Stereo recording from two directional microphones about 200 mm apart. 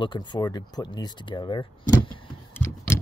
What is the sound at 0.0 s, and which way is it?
Speech, 25° left (ahead or behind).